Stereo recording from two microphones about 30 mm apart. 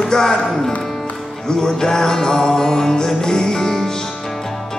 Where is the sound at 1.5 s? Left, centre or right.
Centre.